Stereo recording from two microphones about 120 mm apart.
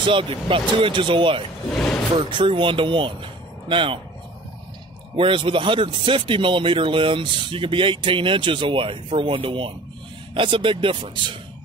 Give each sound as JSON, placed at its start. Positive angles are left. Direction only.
{"t": 0.0, "sound": "speech", "side_deg": -45}
{"t": 1.7, "sound": "a sound", "side_deg": 5}
{"t": 2.1, "sound": "speech", "side_deg": -45}
{"t": 5.1, "sound": "speech", "side_deg": -45}